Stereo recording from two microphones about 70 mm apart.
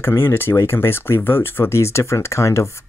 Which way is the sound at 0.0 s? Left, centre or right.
Left.